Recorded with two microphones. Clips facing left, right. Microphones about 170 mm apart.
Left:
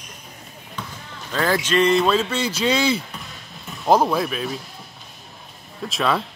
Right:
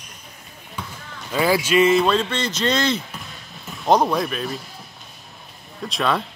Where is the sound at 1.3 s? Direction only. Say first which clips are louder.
Right 2 dB; 10° right (ahead or behind).